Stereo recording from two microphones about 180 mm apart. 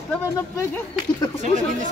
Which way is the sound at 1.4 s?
45° right (ahead or behind).